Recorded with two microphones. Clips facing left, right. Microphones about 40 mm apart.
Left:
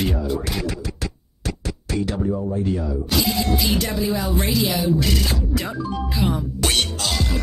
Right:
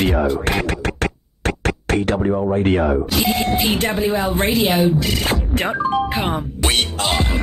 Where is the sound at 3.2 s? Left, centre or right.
Right.